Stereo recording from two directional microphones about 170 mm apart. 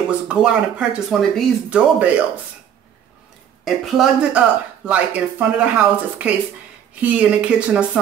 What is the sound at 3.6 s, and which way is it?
Speech, 5° right (ahead or behind).